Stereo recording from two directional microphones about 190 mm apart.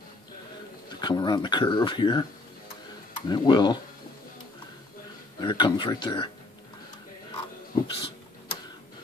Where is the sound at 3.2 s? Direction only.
25° left (ahead or behind).